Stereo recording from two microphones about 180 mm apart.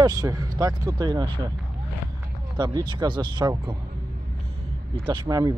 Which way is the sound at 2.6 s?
25° right (ahead or behind).